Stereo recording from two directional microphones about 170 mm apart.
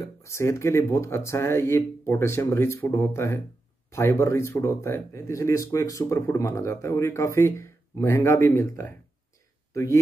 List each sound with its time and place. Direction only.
0.0 s speech: 15° left (ahead or behind)